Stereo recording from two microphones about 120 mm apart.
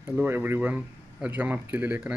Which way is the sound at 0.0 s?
20° right (ahead or behind).